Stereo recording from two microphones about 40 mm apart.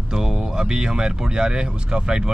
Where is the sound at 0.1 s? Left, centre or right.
Centre.